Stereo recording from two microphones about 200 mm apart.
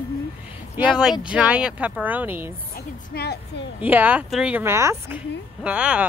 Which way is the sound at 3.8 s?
10° right (ahead or behind).